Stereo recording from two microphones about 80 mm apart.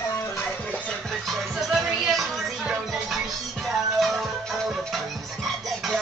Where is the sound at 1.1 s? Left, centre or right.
Centre.